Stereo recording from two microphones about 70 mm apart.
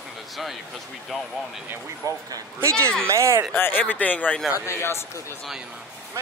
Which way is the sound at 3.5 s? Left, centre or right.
Left.